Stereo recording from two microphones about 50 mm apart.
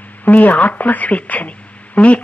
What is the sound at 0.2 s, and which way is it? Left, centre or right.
A woman's voice, left.